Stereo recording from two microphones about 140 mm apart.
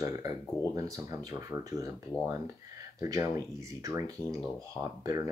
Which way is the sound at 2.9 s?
20° right (ahead or behind).